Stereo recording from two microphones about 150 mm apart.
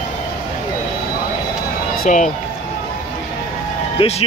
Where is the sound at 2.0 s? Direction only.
60° left (ahead or behind).